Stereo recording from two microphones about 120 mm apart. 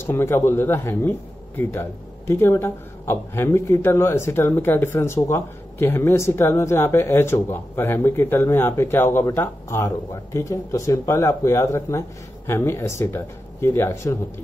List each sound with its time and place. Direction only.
0.0 s speech: 20° left (ahead or behind)